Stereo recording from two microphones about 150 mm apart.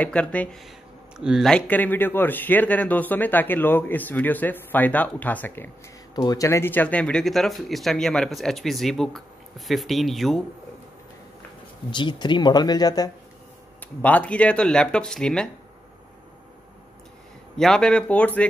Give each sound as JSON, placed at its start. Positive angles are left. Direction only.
{"t": 0.0, "sound": "speech", "side_deg": 10}
{"t": 1.1, "sound": "speech", "side_deg": -5}
{"t": 6.1, "sound": "speech", "side_deg": 25}
{"t": 11.9, "sound": "speech", "side_deg": 30}
{"t": 14.0, "sound": "speech", "side_deg": 10}
{"t": 17.6, "sound": "speech", "side_deg": 5}